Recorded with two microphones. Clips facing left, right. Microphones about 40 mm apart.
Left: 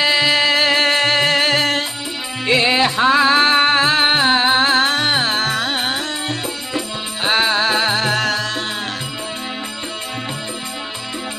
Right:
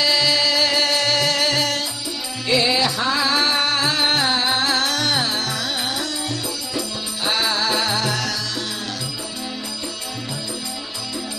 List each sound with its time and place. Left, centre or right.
0.0 s music: left